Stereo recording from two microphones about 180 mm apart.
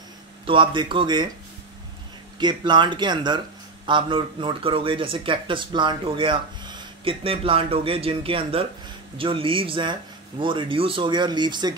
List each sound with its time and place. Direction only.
0.5 s speech: 30° right (ahead or behind)
2.3 s speech: 25° right (ahead or behind)